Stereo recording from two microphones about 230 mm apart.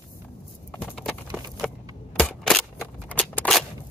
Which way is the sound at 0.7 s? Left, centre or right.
Centre.